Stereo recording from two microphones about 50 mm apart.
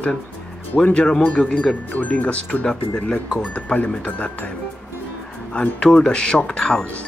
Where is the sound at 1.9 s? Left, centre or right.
Left.